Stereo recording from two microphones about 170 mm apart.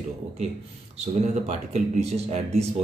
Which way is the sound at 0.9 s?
40° right (ahead or behind).